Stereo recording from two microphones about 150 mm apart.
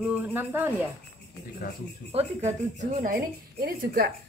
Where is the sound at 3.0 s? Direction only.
70° right (ahead or behind); by 4.1 s 90° right.